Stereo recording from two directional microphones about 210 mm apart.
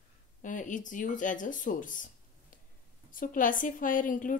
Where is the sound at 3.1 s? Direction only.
40° left (ahead or behind).